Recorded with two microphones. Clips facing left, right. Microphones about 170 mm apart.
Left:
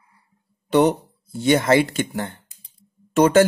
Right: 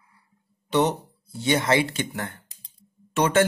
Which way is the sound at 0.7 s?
55° left (ahead or behind).